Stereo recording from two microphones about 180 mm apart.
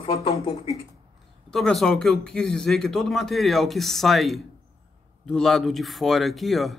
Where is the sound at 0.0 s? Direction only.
25° left (ahead or behind).